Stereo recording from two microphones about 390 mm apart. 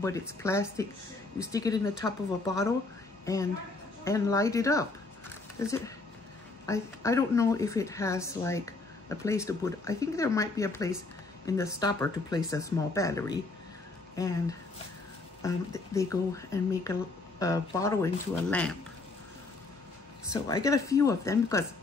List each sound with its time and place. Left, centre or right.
0.2 s a woman's voice: centre
4.0 s a woman's voice: centre
15.4 s a woman's voice: centre
20.2 s a woman's voice: centre